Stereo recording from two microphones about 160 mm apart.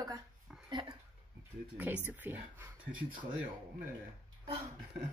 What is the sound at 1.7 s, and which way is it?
Speech, 10° right (ahead or behind).